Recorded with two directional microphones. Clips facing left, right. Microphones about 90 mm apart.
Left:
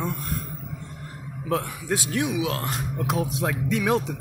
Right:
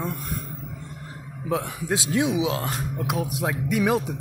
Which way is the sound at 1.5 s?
15° right (ahead or behind).